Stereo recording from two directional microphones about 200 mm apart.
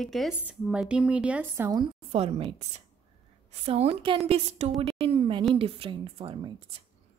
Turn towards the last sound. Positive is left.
turn(degrees=-25)  # may be behind; listen again after turning